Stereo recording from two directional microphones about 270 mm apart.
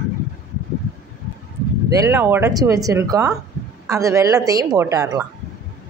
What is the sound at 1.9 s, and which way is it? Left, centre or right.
A woman's voice, centre.